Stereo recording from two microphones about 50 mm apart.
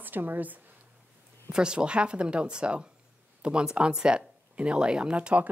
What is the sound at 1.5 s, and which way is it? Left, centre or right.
Speech, centre.